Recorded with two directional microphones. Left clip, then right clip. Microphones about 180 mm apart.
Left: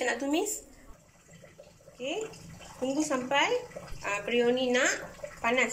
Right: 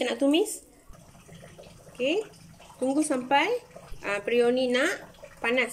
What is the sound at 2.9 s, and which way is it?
A woman's voice, 45° right (ahead or behind).